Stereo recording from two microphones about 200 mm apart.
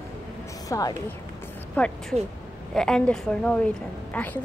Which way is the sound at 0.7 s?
15° left (ahead or behind).